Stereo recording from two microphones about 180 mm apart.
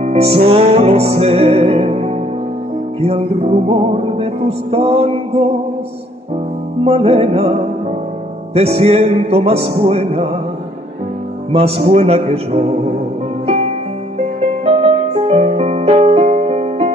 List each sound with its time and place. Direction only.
0.0 s music: 35° right (ahead or behind)
6.8 s music: 35° right (ahead or behind)
11.5 s music: 35° right (ahead or behind)
14.1 s music: 35° right (ahead or behind)